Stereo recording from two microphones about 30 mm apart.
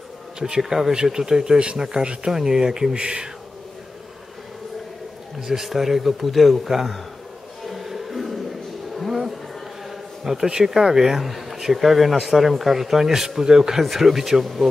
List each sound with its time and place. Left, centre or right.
0.6 s a man's voice: centre
2.0 s speech: right
2.3 s speech: centre
5.5 s speech: centre
7.7 s music: centre
8.9 s a sound: centre
10.2 s a man's voice: centre